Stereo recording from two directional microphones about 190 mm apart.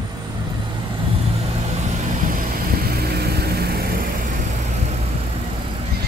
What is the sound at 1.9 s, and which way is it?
Vehicle, 45° right (ahead or behind).